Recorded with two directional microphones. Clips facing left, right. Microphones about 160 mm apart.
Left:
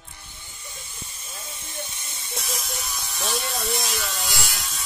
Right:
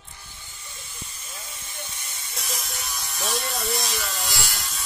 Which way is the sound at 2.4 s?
Centre (ahead or behind).